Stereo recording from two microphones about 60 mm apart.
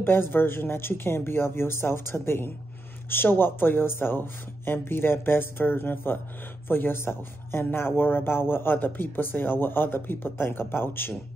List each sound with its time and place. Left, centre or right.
0.0 s speech: left